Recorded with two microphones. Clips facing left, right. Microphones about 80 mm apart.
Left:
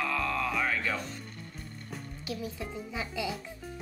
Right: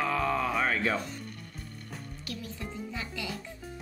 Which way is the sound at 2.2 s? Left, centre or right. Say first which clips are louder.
Left 4 dB; centre.